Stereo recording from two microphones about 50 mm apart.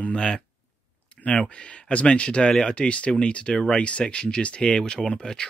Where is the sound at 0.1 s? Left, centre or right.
Centre.